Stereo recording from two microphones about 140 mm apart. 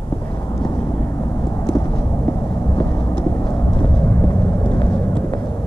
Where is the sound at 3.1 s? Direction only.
10° left (ahead or behind).